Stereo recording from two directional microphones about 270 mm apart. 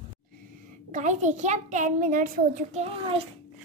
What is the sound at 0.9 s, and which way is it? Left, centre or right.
A child's voice, right.